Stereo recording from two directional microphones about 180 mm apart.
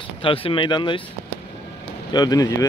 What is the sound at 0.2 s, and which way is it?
Speech, 30° left (ahead or behind).